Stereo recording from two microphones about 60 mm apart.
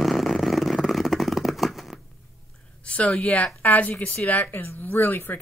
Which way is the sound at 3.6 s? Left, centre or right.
Left.